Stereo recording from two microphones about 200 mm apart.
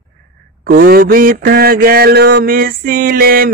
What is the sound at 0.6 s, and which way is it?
Mantra, 45° right (ahead or behind).